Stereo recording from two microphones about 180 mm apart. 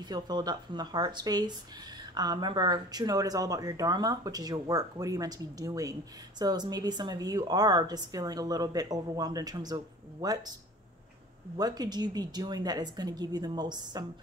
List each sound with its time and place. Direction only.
0.1 s speech: 25° right (ahead or behind)
11.5 s speech: 20° right (ahead or behind)